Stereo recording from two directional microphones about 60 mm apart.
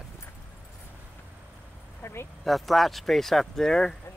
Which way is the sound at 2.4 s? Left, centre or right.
Centre.